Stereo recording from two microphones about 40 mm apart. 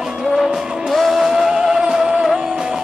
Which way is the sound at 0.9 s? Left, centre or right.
Centre.